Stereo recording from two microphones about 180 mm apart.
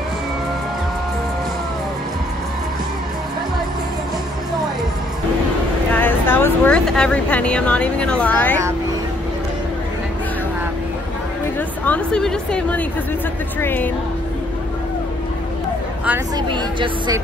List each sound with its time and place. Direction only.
5.9 s speech: 10° left (ahead or behind)
11.8 s a woman's voice: 5° left (ahead or behind)
16.3 s speech: 25° right (ahead or behind)